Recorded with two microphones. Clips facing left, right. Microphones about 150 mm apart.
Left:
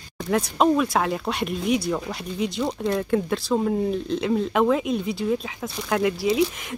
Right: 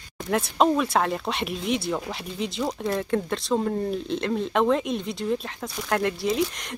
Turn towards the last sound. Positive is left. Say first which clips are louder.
# left 3 dB
turn(degrees=5)  # may be behind; listen again after turning